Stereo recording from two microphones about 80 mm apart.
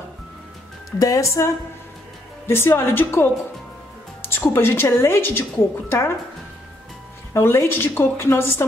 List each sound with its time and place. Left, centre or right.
0.9 s a woman's voice: left
7.3 s a woman's voice: left